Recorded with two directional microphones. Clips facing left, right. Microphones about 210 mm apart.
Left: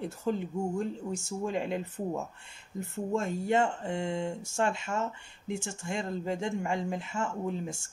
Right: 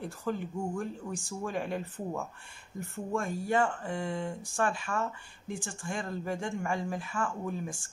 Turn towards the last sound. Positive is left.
turn(degrees=25)  # may be behind; listen again after turning